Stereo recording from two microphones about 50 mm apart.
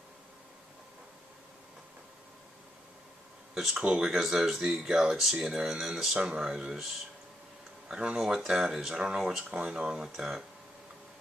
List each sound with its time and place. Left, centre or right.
3.5 s speech: centre
7.9 s speech: centre
8.4 s speech: centre